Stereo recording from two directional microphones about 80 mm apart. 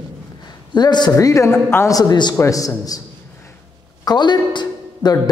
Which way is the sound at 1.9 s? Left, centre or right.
Left.